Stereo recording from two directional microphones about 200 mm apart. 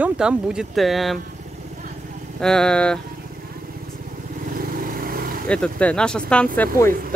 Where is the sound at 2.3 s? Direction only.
5° left (ahead or behind).